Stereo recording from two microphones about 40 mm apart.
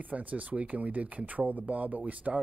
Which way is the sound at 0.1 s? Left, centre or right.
Right.